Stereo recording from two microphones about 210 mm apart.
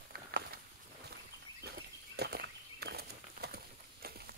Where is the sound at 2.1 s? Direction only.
50° right (ahead or behind).